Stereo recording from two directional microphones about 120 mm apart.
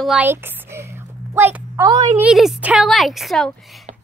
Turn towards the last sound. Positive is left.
turn(degrees=0)  # may be behind; listen again after turning